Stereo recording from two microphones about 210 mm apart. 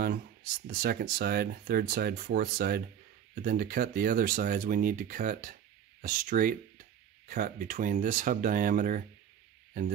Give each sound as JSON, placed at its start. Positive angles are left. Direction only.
{"t": 0.7, "sound": "speech", "side_deg": -45}